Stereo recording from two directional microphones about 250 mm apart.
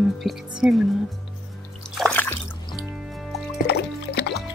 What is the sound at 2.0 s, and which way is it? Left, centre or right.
Music, centre.